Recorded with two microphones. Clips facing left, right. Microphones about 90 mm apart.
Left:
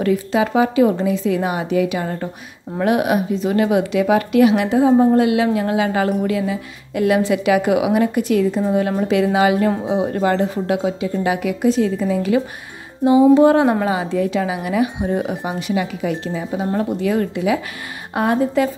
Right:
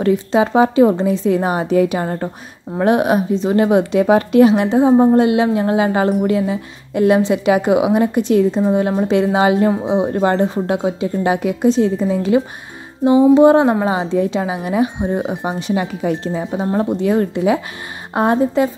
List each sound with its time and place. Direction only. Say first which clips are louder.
0.0 s a woman's voice: right 3 dB; 30° right (ahead or behind)